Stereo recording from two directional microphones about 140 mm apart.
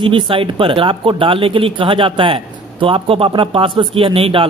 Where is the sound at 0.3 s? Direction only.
35° right (ahead or behind).